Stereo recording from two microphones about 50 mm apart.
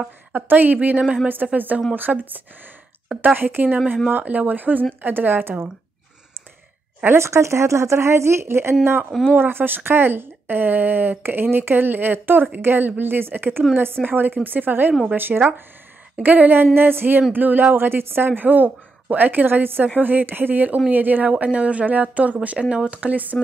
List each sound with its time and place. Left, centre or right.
0.3 s speech: right
7.2 s speech: right
9.4 s speech: right